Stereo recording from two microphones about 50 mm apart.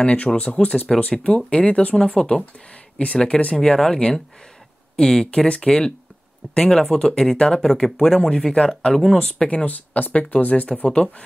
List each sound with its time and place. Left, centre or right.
0.0 s speech: left
2.0 s speech: centre
9.2 s speech: centre
9.7 s speech: left